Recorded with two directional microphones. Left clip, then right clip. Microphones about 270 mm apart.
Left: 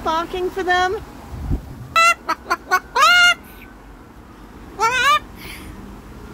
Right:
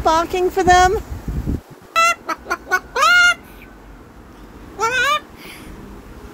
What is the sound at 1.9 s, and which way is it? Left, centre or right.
Chicken, centre.